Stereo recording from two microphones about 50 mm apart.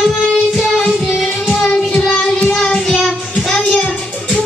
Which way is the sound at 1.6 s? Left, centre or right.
Centre.